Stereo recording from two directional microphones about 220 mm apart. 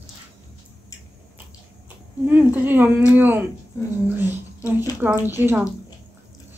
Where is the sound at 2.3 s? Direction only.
10° right (ahead or behind).